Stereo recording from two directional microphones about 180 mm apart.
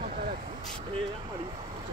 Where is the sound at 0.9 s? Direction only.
30° right (ahead or behind).